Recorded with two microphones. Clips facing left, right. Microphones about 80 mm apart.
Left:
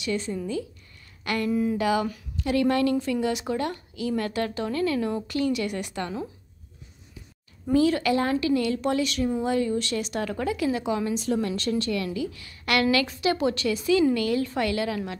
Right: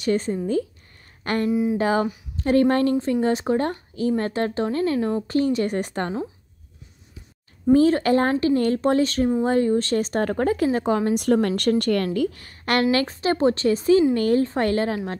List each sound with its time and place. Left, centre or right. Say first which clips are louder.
0.0 s speech: right 6 dB; right
1.5 s a sound: right 2 dB; centre
1.8 s speech: right 3 dB; right
7.7 s speech: right 5 dB; right
11.1 s a woman's voice: right 6 dB; right